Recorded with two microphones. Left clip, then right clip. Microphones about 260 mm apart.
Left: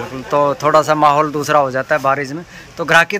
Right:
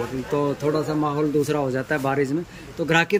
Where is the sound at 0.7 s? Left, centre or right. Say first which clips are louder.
Left 12 dB; left.